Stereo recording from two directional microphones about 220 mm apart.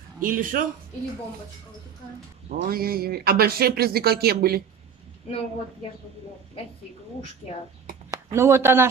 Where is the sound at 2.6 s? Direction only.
45° right (ahead or behind).